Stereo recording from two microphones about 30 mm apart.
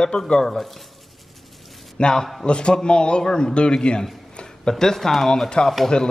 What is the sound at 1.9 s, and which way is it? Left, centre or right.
A man's voice, left.